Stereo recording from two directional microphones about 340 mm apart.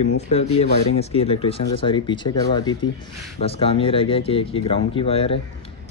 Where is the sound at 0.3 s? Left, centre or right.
Centre.